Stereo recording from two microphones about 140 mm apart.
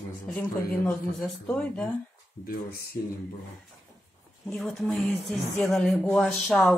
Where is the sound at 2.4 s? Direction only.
90° left.